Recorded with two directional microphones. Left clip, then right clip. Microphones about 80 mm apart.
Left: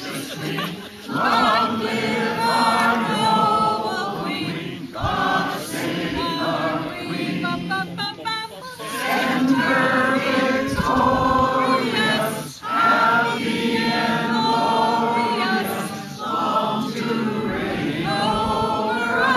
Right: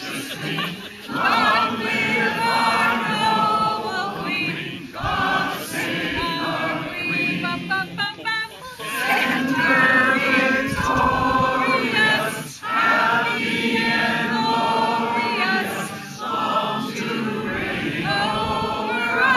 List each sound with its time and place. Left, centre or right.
1.1 s choir: centre
7.4 s music: centre
9.1 s chatter: centre
10.1 s music: centre
10.8 s choir: centre
14.3 s chant: centre
16.4 s choir: left
18.0 s choir: centre